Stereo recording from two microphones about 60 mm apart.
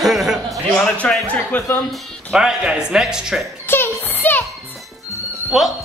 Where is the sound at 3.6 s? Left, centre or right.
Left.